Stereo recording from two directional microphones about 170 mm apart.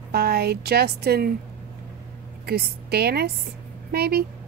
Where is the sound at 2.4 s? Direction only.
65° right (ahead or behind).